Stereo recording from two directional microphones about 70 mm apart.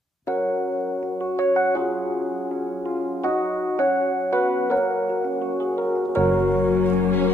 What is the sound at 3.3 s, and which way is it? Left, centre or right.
Music, left.